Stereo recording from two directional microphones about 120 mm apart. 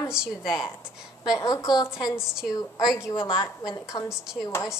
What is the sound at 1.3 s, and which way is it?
A woman's voice, 30° left (ahead or behind).